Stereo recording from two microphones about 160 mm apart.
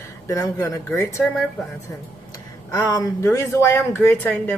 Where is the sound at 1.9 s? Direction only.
20° left (ahead or behind).